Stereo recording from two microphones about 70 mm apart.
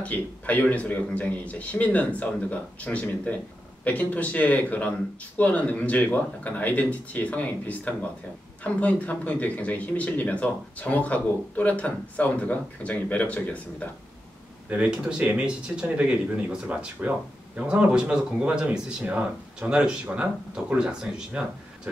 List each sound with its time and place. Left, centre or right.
0.0 s a man's voice: left
14.7 s speech: centre